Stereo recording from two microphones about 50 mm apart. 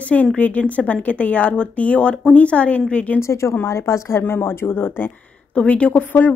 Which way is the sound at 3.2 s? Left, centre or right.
Left.